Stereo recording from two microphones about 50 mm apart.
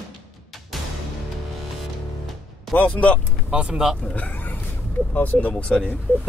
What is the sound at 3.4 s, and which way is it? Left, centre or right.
Speech, centre.